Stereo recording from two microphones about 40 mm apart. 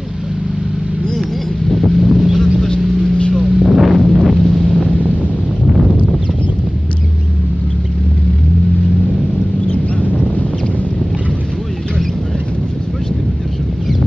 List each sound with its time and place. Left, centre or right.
1.7 s boat: centre
3.5 s artillery fire: centre
3.8 s wind noise: centre
4.8 s vehicle: left
9.7 s a sound: left